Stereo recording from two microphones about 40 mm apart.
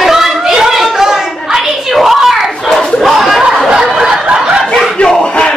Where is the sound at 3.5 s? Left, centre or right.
Centre.